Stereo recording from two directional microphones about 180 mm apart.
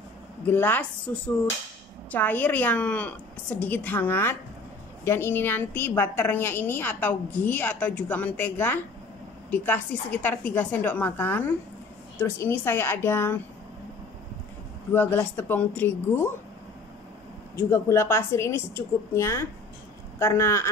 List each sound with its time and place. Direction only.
0.5 s a woman's voice: 10° left (ahead or behind)
14.9 s a woman's voice: 10° left (ahead or behind)
17.6 s a woman's voice: 15° left (ahead or behind)